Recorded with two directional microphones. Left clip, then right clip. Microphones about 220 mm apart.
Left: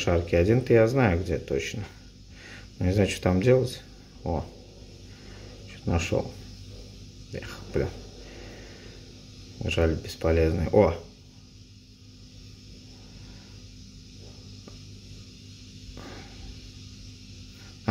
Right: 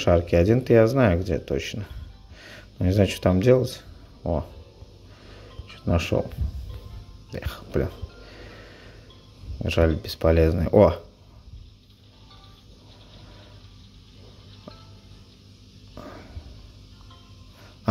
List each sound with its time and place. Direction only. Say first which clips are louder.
0.0 s speech: right 4 dB; 20° right (ahead or behind)
5.9 s speech: right 3 dB; 20° right (ahead or behind)
7.3 s speech: right 2 dB; 20° right (ahead or behind)
9.6 s speech: right 4 dB; 20° right (ahead or behind)
15.9 s music: right 3 dB; 15° right (ahead or behind)